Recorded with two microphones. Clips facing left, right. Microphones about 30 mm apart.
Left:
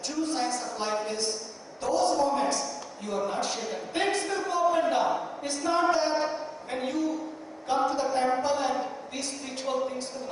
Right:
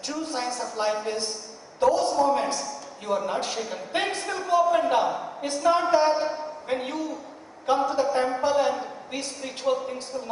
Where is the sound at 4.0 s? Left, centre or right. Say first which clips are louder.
Left 1 dB; centre.